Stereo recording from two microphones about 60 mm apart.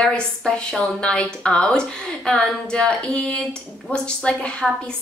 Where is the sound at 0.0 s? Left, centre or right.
Centre.